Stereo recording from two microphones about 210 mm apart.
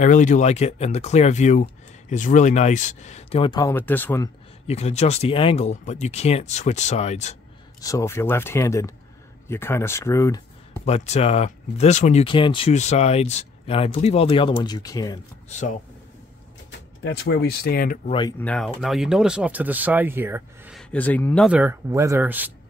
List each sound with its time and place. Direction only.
0.0 s speech: 35° left (ahead or behind); by 4.3 s 10° left (ahead or behind)
4.6 s speech: 30° left (ahead or behind)
7.8 s speech: 15° left (ahead or behind)
10.7 s speech: 30° left (ahead or behind)
17.0 s speech: 55° left (ahead or behind)
18.4 s speech: 5° left (ahead or behind); by 20.7 s 10° right (ahead or behind)
20.7 s speech: 5° left (ahead or behind)
21.5 s speech: 10° right (ahead or behind)